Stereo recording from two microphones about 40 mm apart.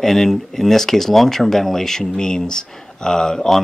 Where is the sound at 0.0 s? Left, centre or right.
Centre.